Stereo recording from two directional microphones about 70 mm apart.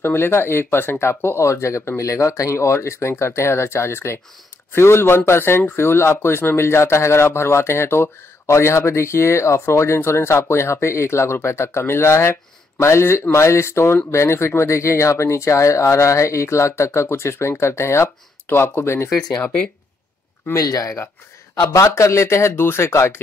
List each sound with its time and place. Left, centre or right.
0.0 s speech: left
19.4 s speech: left
20.5 s speech: left
21.8 s speech: left